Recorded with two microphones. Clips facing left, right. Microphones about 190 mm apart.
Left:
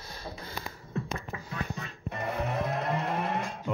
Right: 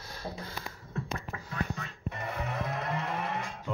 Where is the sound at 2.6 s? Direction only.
40° left (ahead or behind).